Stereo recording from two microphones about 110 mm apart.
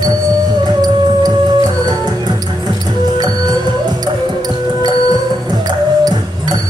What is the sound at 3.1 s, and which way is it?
Music, 35° right (ahead or behind).